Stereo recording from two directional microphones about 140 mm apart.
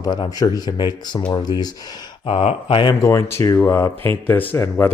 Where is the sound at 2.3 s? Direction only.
45° left (ahead or behind).